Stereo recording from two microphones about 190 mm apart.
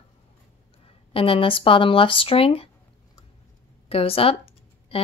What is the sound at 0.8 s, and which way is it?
Speech, 30° left (ahead or behind).